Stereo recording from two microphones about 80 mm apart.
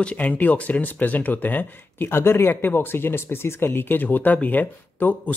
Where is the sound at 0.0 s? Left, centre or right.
Centre.